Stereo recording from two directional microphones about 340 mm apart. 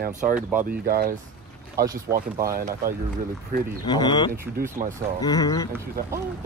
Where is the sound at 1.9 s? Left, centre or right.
Centre.